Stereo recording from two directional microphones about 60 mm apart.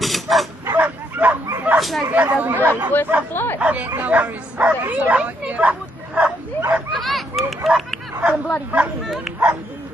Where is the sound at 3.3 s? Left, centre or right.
Left.